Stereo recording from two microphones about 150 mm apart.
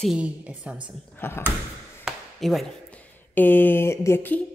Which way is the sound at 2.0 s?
Centre (ahead or behind).